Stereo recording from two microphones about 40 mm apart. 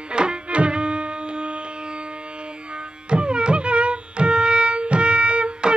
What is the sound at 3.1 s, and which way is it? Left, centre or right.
Music, right.